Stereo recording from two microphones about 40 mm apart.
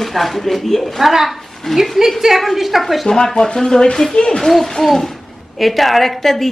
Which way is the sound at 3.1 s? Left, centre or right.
Centre.